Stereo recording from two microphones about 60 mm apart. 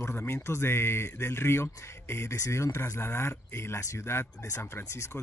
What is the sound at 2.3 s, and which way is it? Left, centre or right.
Speech, left.